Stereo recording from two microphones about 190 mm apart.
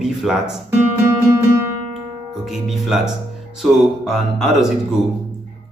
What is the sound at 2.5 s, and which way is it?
A man's voice, centre (ahead or behind).